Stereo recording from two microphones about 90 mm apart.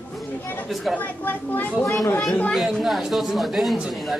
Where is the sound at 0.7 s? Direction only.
Centre (ahead or behind).